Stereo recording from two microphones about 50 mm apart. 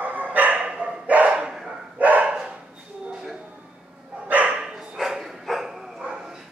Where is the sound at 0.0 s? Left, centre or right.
Right.